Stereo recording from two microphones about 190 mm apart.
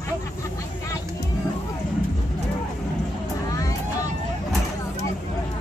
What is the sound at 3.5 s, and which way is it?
Vehicle, 15° left (ahead or behind).